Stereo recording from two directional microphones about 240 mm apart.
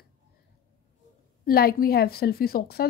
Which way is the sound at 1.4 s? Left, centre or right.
Left.